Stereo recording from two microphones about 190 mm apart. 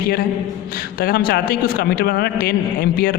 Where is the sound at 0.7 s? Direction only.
50° left (ahead or behind).